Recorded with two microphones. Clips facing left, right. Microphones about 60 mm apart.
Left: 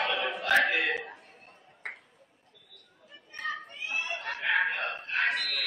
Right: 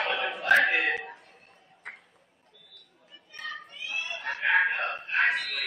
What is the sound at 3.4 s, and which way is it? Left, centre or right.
Children playing, centre.